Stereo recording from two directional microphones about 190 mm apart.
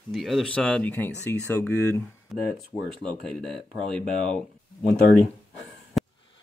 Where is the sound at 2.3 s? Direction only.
Centre (ahead or behind).